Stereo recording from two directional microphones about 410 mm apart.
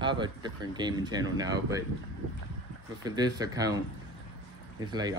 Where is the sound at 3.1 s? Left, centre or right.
Centre.